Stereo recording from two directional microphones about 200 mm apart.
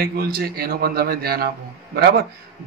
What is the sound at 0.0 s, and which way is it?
A man's voice, 50° right (ahead or behind).